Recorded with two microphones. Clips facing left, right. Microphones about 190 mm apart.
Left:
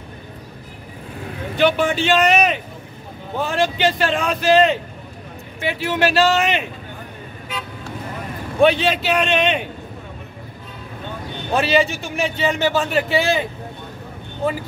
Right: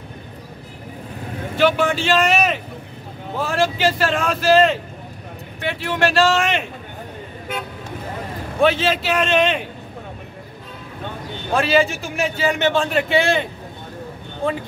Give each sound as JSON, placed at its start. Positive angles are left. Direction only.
{"t": 1.6, "sound": "a man's voice", "side_deg": 0}
{"t": 7.5, "sound": "speech", "side_deg": -55}
{"t": 8.5, "sound": "a man's voice", "side_deg": 0}
{"t": 11.5, "sound": "a man's voice", "side_deg": 0}